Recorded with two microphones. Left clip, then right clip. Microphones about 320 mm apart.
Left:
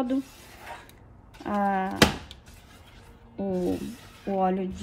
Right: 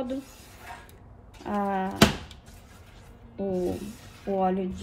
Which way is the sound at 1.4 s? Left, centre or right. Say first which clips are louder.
Left 2 dB; left.